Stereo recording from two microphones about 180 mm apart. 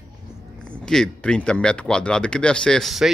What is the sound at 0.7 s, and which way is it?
A man's voice, 5° left (ahead or behind).